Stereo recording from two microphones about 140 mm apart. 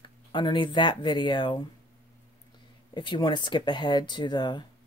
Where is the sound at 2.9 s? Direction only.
35° left (ahead or behind).